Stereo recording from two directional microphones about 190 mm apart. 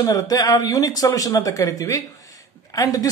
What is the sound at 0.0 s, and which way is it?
Speech, 20° left (ahead or behind).